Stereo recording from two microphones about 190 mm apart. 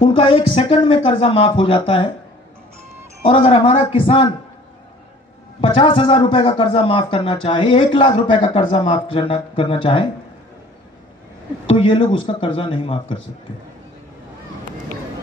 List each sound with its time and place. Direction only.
0.0 s a man's voice: 25° left (ahead or behind)
3.3 s a man's voice: 30° left (ahead or behind)
5.6 s a man's voice: 25° left (ahead or behind)
11.6 s a man's voice: 25° left (ahead or behind)